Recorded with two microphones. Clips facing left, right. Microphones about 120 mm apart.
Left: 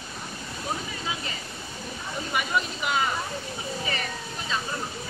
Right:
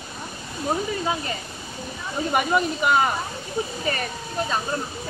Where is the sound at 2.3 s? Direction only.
50° right (ahead or behind).